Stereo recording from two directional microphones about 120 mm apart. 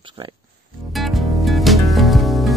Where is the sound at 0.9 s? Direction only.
Centre (ahead or behind).